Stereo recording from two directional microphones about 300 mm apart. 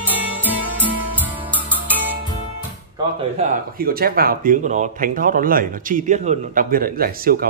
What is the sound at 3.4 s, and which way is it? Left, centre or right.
Speech, right.